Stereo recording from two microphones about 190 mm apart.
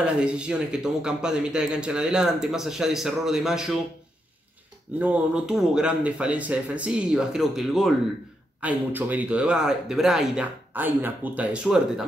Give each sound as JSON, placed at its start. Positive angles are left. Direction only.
{"t": 0.0, "sound": "a man's voice", "side_deg": -5}
{"t": 4.9, "sound": "a man's voice", "side_deg": -10}